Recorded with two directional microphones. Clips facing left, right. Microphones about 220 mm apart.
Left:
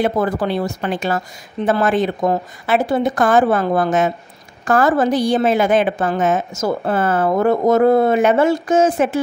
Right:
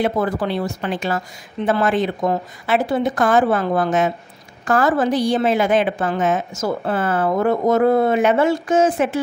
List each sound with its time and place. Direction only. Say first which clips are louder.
0.0 s a woman's voice: left 2 dB; 45° left (ahead or behind)